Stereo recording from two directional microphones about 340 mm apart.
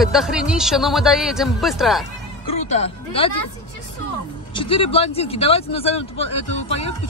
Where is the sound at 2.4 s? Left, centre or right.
Centre.